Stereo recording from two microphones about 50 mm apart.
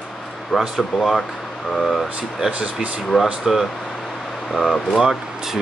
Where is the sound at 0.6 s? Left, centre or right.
Centre.